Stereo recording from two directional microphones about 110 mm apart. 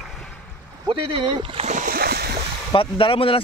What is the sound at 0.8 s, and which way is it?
Speech, 50° right (ahead or behind).